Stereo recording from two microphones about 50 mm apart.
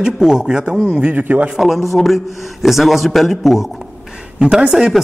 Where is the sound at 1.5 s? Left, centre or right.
Centre.